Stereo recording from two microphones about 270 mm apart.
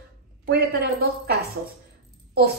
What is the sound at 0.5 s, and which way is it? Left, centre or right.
A woman's voice, right.